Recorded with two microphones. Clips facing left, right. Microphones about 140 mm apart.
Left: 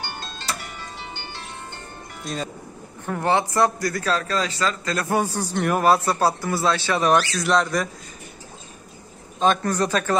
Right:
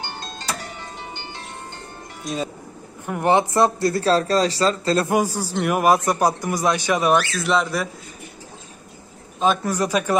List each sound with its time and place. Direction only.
0.9 s music: 15° right (ahead or behind)
2.2 s speech: 5° right (ahead or behind)
3.1 s speech: 15° right (ahead or behind)
5.0 s a man's voice: 10° right (ahead or behind)
9.4 s a man's voice: 5° right (ahead or behind)